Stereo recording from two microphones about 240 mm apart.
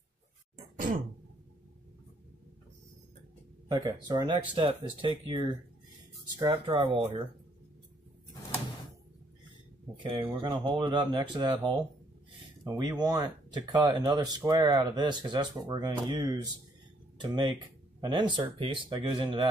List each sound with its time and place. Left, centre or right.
3.6 s speech: centre
10.0 s speech: right